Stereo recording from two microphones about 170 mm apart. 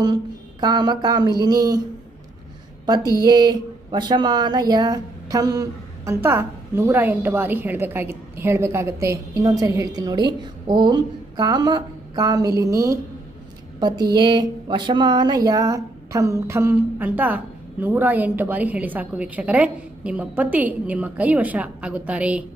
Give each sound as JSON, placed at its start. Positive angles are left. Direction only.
{"t": 0.0, "sound": "speech", "side_deg": -25}
{"t": 2.9, "sound": "speech", "side_deg": -25}